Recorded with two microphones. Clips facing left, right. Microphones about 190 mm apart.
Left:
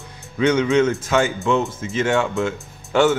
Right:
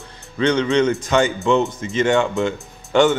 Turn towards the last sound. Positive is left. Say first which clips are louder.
# right 1 dB
turn(degrees=5)  # may be behind; listen again after turning